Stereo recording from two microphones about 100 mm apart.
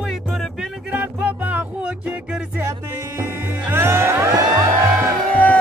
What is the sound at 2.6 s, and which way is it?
Music, 30° right (ahead or behind).